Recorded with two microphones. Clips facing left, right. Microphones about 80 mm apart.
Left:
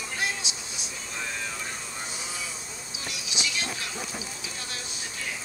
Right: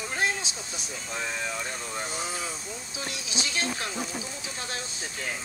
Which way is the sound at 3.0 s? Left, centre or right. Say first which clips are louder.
Left 1 dB; right.